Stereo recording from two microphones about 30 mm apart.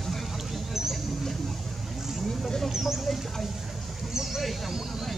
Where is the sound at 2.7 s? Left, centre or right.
Centre.